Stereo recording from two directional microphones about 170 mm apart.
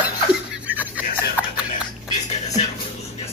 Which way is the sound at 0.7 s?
10° right (ahead or behind).